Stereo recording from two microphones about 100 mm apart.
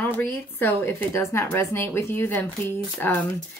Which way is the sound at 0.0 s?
20° left (ahead or behind).